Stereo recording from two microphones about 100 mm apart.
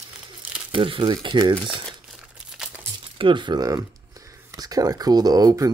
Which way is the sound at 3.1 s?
55° right (ahead or behind).